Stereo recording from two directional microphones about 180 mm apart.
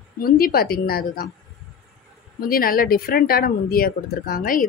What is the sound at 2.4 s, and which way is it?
A woman's voice, 55° left (ahead or behind).